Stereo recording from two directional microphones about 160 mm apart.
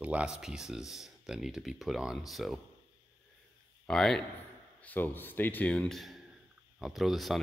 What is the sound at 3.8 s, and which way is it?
Speech, 5° left (ahead or behind).